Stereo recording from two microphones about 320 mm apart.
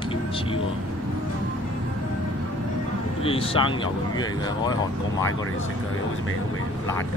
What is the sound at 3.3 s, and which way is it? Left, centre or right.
Speech, centre.